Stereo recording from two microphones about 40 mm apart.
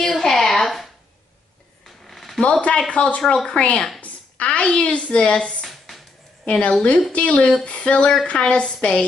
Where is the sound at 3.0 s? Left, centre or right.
Left.